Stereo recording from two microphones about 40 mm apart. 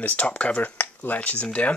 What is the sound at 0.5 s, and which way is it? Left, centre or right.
Speech, left.